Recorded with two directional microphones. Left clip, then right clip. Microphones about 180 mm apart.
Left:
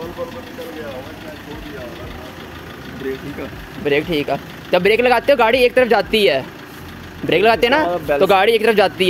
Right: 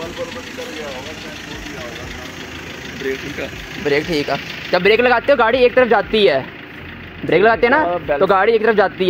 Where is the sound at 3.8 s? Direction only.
15° left (ahead or behind).